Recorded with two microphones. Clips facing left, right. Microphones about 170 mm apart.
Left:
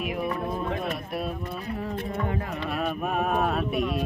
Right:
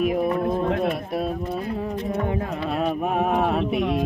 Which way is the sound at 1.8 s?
15° right (ahead or behind).